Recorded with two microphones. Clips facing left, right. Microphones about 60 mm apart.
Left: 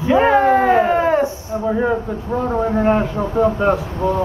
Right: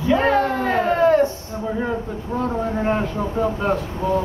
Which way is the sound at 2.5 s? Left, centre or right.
Left.